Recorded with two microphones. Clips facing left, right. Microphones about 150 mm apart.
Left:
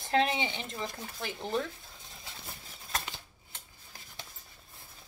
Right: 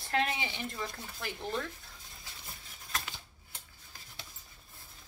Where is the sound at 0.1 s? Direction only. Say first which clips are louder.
Left 4 dB; 25° left (ahead or behind).